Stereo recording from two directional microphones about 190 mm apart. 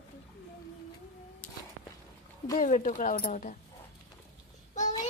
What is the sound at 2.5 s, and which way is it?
Speech, 40° left (ahead or behind).